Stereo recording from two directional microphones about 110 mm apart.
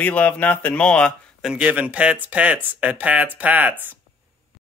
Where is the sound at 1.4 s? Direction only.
10° right (ahead or behind).